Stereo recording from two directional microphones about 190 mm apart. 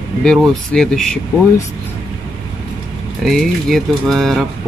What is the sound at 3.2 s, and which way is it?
Speech, centre (ahead or behind).